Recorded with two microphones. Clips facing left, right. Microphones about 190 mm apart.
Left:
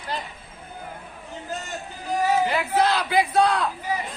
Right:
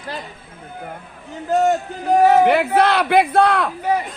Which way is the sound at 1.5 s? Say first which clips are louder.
Right 18 dB; 60° right (ahead or behind).